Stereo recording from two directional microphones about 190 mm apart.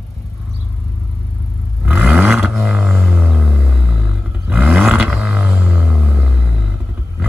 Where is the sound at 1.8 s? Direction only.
Centre (ahead or behind).